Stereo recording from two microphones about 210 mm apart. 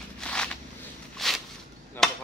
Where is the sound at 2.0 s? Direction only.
Centre (ahead or behind).